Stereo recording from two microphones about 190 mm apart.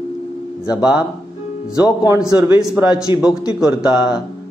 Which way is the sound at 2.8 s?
10° right (ahead or behind).